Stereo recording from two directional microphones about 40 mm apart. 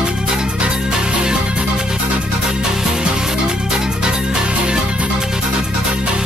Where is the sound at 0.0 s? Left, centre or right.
Right.